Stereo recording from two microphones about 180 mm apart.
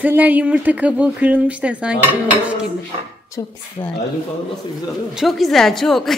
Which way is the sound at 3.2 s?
15° left (ahead or behind).